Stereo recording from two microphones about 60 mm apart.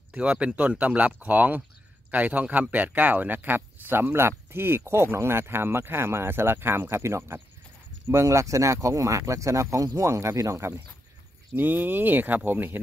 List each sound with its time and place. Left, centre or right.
0.1 s speech: centre; by 10.8 s right
11.5 s speech: right